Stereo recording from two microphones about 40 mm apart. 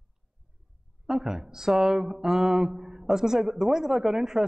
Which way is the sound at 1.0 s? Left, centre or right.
Centre.